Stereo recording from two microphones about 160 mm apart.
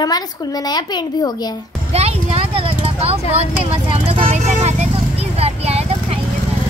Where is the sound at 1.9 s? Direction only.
40° right (ahead or behind).